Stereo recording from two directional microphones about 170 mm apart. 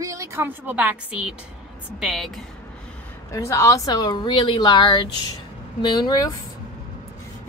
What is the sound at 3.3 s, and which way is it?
A woman's voice, 15° left (ahead or behind).